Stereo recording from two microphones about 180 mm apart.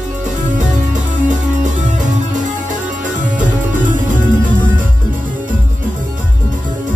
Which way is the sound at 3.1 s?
45° right (ahead or behind).